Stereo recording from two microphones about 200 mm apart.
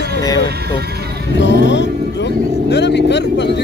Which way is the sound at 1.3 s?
65° left (ahead or behind).